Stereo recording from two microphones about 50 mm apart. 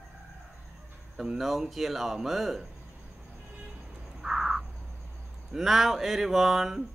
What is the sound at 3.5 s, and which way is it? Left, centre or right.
Vehicle, centre.